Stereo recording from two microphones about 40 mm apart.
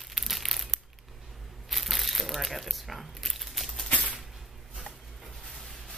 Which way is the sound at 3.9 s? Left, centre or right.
Left.